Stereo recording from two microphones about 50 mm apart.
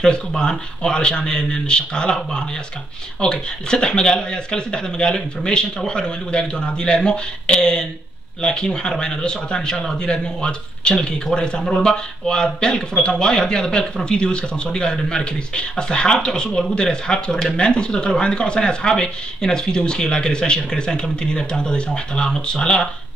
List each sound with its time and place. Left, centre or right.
0.0 s speech: centre